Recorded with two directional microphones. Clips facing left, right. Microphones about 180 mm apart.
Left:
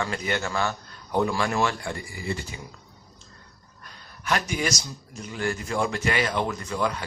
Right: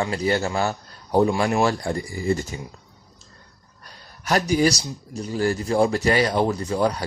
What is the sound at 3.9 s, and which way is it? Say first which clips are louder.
A man's voice: right 3 dB; 35° right (ahead or behind).